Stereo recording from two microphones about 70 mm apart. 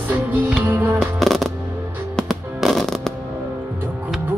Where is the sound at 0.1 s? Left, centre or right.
Right.